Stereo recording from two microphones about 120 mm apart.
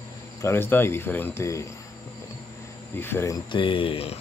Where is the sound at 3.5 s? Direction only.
45° left (ahead or behind).